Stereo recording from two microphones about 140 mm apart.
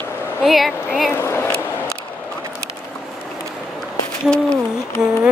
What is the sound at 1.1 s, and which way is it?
Speech, 20° left (ahead or behind).